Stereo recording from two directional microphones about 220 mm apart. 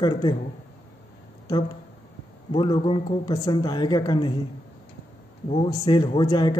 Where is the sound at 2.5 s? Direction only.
25° left (ahead or behind).